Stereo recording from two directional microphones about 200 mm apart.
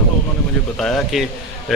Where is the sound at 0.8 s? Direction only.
Centre (ahead or behind).